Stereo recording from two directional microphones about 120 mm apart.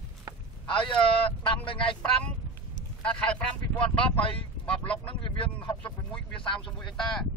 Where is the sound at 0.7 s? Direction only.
45° left (ahead or behind).